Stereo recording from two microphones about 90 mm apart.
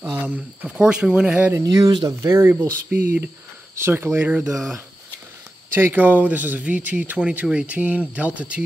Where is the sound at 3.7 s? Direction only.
25° right (ahead or behind).